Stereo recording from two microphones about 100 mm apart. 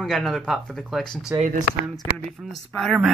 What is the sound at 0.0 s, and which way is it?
Speech, centre (ahead or behind).